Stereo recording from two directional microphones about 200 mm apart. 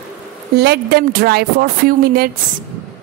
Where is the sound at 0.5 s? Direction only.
55° right (ahead or behind).